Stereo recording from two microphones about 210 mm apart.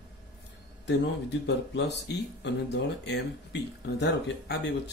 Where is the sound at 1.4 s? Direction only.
55° left (ahead or behind).